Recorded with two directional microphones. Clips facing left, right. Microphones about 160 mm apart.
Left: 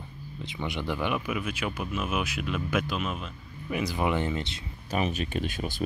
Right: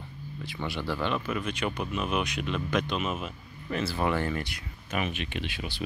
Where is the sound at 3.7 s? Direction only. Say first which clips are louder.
Left 1 dB; 15° left (ahead or behind).